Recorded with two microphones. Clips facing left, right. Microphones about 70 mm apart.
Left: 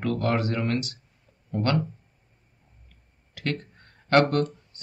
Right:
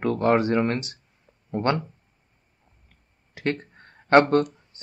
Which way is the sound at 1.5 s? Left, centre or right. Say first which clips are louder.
Right 2 dB; right.